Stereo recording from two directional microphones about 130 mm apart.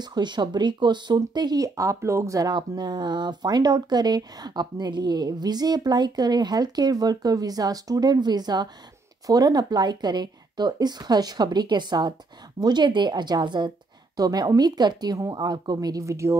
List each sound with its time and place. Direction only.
0.0 s speech: 35° right (ahead or behind)